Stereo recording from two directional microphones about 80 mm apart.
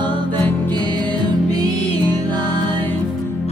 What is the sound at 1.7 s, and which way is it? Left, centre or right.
Music, left.